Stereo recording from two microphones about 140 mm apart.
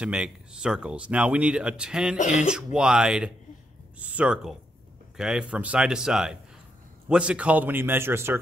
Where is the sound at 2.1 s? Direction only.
60° left (ahead or behind).